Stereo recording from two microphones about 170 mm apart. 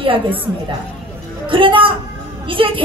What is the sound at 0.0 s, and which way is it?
Speech, 30° right (ahead or behind).